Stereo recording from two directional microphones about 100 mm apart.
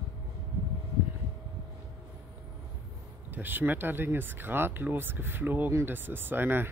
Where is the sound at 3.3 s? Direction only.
20° right (ahead or behind).